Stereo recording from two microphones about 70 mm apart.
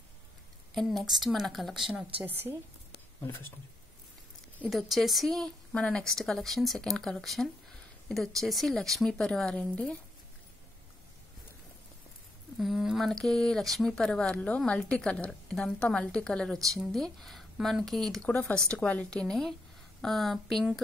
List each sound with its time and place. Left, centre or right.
0.7 s speech: centre
2.2 s a woman's voice: right
3.2 s speech: left
4.6 s speech: centre
12.5 s a woman's voice: centre